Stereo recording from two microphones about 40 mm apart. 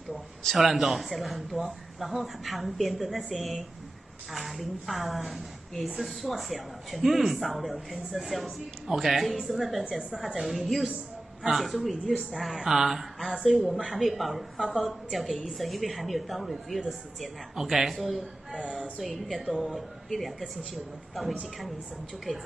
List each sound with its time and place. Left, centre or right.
0.6 s speech: centre
9.8 s speech: centre
10.4 s speech: centre
13.9 s speech: centre
18.5 s a woman's voice: right
18.9 s speech: centre